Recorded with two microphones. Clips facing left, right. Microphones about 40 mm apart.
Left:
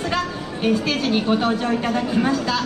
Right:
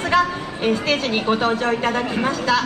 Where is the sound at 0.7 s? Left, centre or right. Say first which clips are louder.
Even; centre.